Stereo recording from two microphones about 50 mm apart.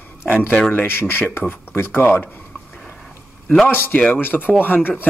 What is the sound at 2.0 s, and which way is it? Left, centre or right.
Speech, left.